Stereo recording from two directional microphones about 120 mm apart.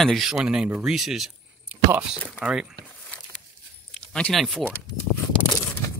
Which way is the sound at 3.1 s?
10° left (ahead or behind).